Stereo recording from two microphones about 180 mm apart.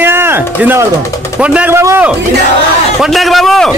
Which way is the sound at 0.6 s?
10° right (ahead or behind).